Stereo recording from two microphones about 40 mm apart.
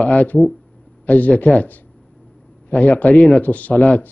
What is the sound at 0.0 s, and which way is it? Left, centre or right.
A man's voice, left.